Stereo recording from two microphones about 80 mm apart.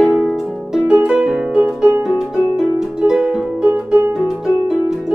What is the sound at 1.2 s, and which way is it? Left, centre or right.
Music, centre.